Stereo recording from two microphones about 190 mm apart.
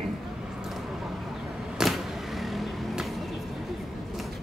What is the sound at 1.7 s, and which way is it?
Vehicle, centre (ahead or behind).